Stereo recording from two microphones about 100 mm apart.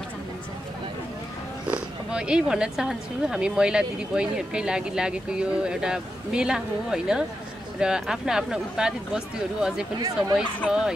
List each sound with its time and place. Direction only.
2.0 s speech: 10° right (ahead or behind)
9.9 s speech: 40° right (ahead or behind)
10.7 s speech: 5° right (ahead or behind)